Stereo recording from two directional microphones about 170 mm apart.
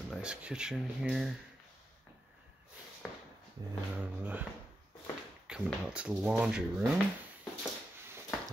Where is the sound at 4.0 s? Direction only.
10° right (ahead or behind).